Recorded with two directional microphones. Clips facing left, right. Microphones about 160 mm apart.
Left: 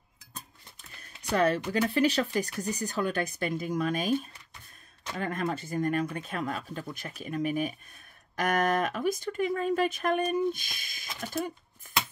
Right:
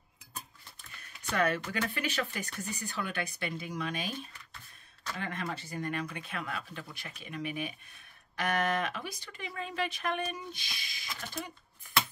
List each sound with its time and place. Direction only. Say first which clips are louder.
1.3 s speech: left 5 dB; 35° left (ahead or behind)